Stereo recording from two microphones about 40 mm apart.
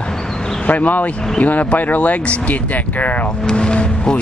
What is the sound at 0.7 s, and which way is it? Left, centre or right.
Speech, left.